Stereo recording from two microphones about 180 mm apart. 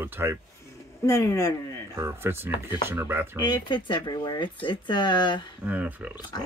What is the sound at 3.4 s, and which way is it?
Speech, 25° left (ahead or behind).